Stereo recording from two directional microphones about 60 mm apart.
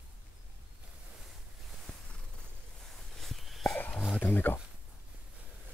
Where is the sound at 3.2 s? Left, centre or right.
Centre.